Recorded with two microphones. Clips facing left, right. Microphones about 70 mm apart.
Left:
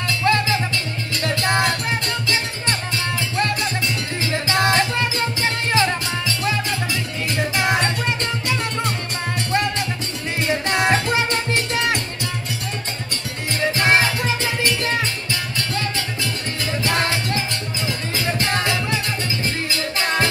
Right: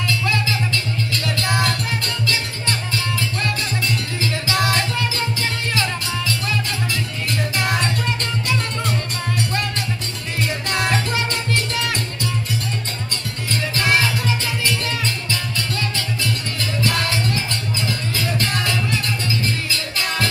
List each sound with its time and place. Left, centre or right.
0.2 s music: left
4.3 s music: left
9.5 s music: left
13.8 s music: left
16.8 s music: left
20.0 s music: left